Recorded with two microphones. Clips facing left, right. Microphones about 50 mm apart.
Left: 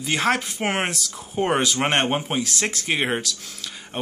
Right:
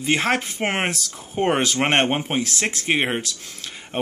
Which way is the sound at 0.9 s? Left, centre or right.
Right.